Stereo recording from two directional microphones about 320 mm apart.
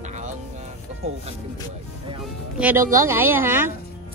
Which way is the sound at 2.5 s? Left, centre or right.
Centre.